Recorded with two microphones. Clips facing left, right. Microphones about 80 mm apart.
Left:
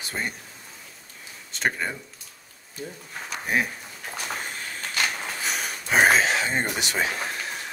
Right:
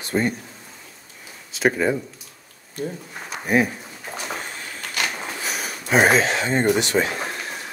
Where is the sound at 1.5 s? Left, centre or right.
Centre.